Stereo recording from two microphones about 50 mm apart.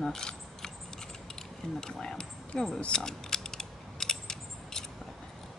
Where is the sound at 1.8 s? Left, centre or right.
Centre.